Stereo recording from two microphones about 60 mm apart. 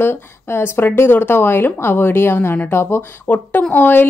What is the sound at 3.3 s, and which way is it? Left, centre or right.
Speech, left.